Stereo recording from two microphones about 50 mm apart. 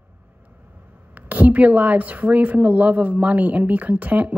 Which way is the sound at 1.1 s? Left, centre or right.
Right.